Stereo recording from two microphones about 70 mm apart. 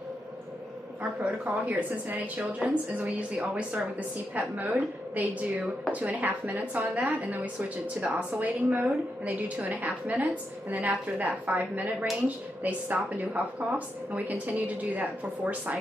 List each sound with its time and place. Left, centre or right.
1.2 s a woman's voice: right